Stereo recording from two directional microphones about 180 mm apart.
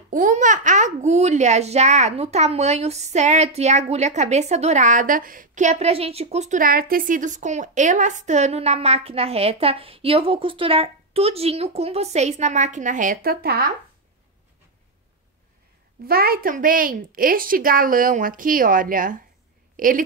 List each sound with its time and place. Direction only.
0.1 s a child's voice: 45° right (ahead or behind)
16.1 s a woman's voice: 55° right (ahead or behind)